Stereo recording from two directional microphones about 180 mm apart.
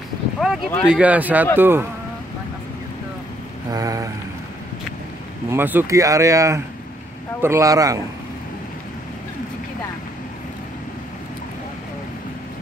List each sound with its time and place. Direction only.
0.4 s speech: centre (ahead or behind)
3.7 s mantra: 20° right (ahead or behind)
5.5 s speech: 10° right (ahead or behind)